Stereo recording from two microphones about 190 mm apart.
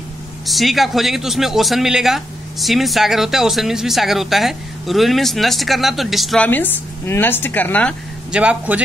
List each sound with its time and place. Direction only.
0.5 s speech: centre (ahead or behind)
8.3 s a man's voice: 5° right (ahead or behind)